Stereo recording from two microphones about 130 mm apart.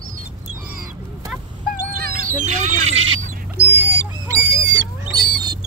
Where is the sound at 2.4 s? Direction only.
65° right (ahead or behind).